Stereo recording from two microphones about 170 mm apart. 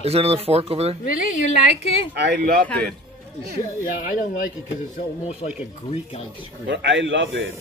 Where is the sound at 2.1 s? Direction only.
70° right (ahead or behind).